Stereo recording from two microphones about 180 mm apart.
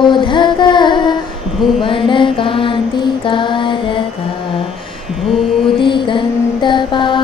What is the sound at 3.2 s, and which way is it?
Music, 25° left (ahead or behind).